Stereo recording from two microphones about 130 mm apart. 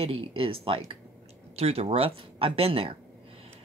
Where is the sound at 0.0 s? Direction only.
45° right (ahead or behind).